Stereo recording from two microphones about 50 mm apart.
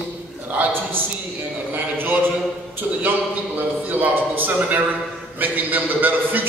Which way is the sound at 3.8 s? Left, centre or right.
Right.